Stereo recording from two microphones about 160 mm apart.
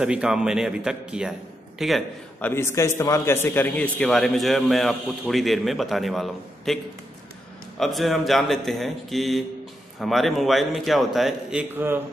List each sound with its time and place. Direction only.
0.0 s a man's voice: 5° right (ahead or behind)
2.4 s a man's voice: 15° left (ahead or behind)
7.8 s a man's voice: centre (ahead or behind)
11.7 s speech: 15° right (ahead or behind)